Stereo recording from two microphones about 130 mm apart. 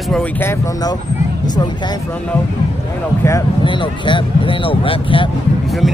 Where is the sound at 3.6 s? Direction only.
40° left (ahead or behind).